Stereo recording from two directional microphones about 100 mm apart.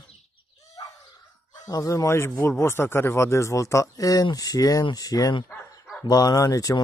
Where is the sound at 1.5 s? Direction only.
35° left (ahead or behind).